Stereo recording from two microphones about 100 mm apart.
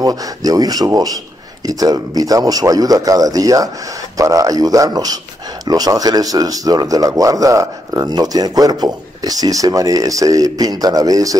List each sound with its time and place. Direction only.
0.0 s speech: 40° right (ahead or behind)